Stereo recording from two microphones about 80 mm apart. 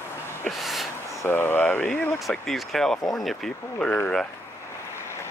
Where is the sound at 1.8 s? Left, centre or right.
Centre.